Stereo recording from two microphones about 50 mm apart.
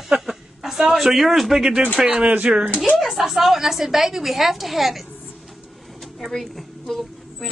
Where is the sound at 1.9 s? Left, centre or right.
Centre.